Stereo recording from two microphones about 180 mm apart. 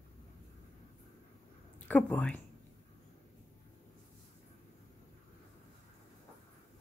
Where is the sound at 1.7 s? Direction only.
10° left (ahead or behind).